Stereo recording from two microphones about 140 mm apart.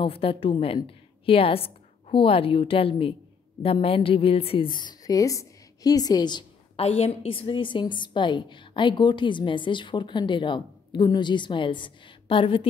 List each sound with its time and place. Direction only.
0.0 s a woman's voice: 40° left (ahead or behind)
6.8 s a woman's voice: 45° left (ahead or behind)